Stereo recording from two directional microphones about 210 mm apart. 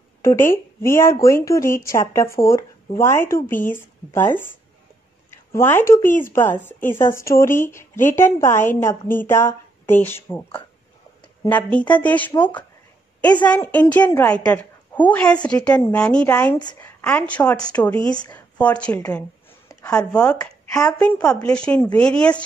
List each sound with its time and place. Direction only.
0.2 s a woman's voice: 10° left (ahead or behind)
13.5 s a woman's voice: 5° left (ahead or behind)